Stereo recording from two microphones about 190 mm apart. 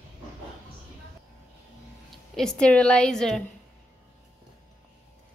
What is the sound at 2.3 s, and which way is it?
A woman's voice, 5° left (ahead or behind).